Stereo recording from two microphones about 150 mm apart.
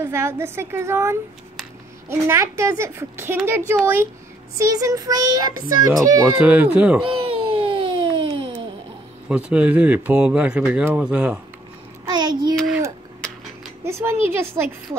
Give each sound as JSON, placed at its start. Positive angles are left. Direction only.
{"t": 0.0, "sound": "a child's voice", "side_deg": -15}
{"t": 6.3, "sound": "speech", "side_deg": -10}
{"t": 7.1, "sound": "music", "side_deg": -35}
{"t": 9.3, "sound": "speech", "side_deg": -10}
{"t": 12.1, "sound": "child singing", "side_deg": -30}
{"t": 13.8, "sound": "speech", "side_deg": -15}